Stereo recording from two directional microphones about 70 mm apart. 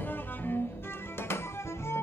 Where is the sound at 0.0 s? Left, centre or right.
Left.